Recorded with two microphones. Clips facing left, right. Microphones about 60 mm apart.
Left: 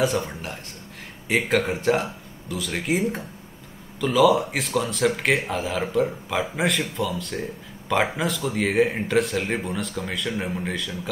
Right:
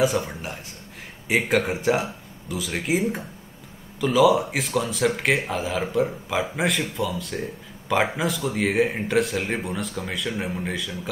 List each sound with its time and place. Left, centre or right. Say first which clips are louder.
0.0 s speech: right 1 dB; centre